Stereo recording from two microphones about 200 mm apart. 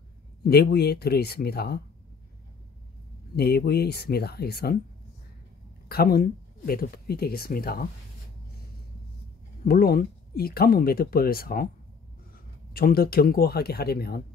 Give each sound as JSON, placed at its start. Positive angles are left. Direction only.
{"t": 0.4, "sound": "speech", "side_deg": 55}
{"t": 3.3, "sound": "speech", "side_deg": 50}
{"t": 5.9, "sound": "speech", "side_deg": 50}
{"t": 9.7, "sound": "speech", "side_deg": 50}
{"t": 12.7, "sound": "speech", "side_deg": 50}